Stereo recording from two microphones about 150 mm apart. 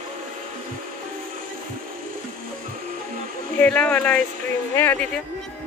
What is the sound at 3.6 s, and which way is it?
Speech, 10° left (ahead or behind).